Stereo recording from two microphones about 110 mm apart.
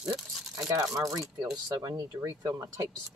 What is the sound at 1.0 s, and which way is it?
Speech, 30° right (ahead or behind).